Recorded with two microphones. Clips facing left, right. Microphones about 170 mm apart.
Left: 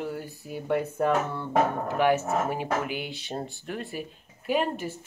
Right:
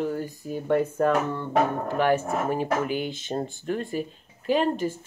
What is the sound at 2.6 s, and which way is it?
Speech, 45° right (ahead or behind).